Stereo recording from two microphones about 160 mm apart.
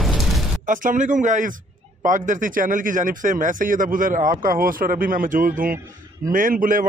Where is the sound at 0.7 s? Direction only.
50° right (ahead or behind).